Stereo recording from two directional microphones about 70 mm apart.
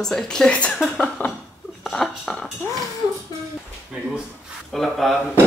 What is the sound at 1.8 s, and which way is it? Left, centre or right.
Speech, centre.